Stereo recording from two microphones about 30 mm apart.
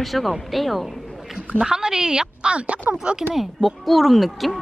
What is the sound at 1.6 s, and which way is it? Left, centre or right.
Speech, right.